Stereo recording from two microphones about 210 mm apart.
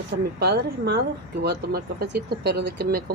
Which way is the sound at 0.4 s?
50° right (ahead or behind).